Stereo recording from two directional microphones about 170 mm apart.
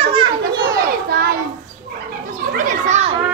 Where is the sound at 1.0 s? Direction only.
65° right (ahead or behind).